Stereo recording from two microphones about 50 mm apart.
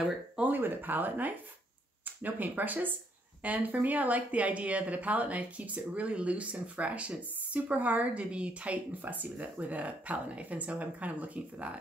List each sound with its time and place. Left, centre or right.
0.4 s speech: right